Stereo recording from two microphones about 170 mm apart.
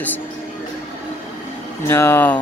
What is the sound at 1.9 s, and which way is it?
Speech, 15° left (ahead or behind).